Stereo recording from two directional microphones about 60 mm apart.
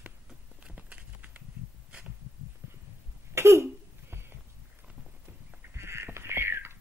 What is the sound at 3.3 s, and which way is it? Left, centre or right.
Throat clearing, right.